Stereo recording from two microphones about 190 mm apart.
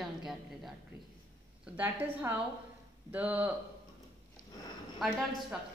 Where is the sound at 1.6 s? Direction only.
10° right (ahead or behind).